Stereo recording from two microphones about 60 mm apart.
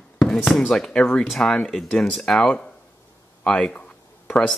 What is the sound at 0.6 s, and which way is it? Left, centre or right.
Speech, centre.